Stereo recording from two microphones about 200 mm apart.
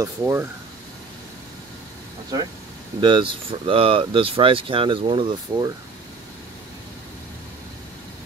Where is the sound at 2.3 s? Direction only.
15° right (ahead or behind).